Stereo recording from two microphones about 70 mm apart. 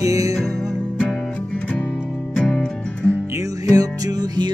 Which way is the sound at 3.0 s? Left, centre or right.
Right.